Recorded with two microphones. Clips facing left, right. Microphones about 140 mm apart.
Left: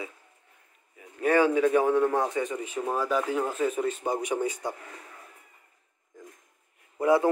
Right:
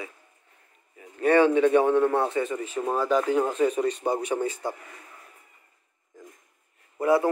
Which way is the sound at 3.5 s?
5° left (ahead or behind).